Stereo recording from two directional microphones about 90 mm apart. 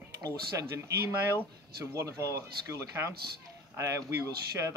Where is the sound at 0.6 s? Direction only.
25° right (ahead or behind).